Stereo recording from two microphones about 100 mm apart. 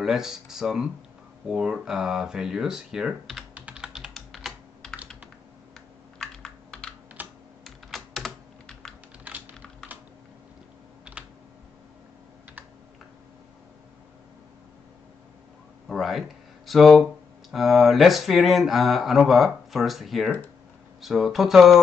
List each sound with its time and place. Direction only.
0.0 s speech: 5° right (ahead or behind)
3.5 s computer keyboard: 10° right (ahead or behind)
6.1 s computer keyboard: 5° left (ahead or behind)
7.2 s computer keyboard: 15° right (ahead or behind)
7.6 s computer keyboard: centre (ahead or behind)
15.9 s speech: centre (ahead or behind)